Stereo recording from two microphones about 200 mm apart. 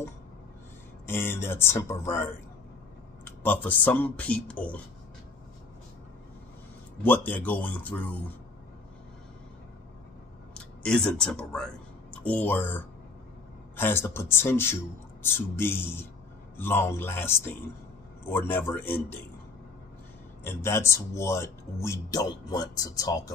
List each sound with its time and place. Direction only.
1.0 s speech: 10° left (ahead or behind)
3.3 s speech: 10° left (ahead or behind)
7.0 s speech: 10° left (ahead or behind)
10.5 s speech: 5° left (ahead or behind)
20.4 s speech: 10° left (ahead or behind)